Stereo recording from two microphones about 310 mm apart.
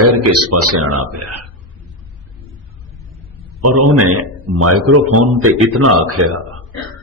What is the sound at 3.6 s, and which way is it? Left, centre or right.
A man's voice, right.